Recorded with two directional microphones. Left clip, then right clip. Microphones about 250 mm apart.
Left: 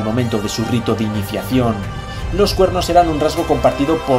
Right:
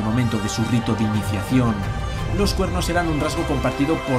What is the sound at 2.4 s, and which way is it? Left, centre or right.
Speech, right.